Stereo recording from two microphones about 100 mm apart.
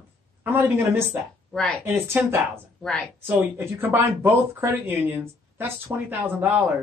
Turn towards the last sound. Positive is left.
turn(degrees=-20)  # may be behind; listen again after turning